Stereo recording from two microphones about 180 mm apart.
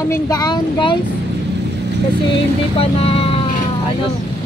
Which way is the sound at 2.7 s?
30° left (ahead or behind).